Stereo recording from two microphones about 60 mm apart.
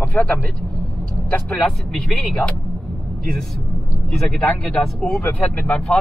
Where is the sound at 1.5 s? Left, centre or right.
Centre.